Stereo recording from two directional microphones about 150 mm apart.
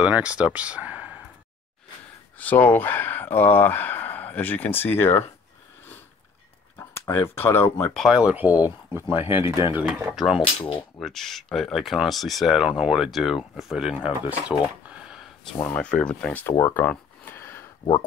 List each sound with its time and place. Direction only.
0.0 s speech: 10° right (ahead or behind)
2.3 s speech: 10° left (ahead or behind)
7.1 s speech: 15° left (ahead or behind)
7.9 s speech: centre (ahead or behind)
15.4 s speech: 10° left (ahead or behind)